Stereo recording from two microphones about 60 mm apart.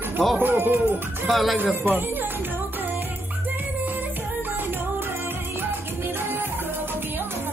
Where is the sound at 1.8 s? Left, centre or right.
Right.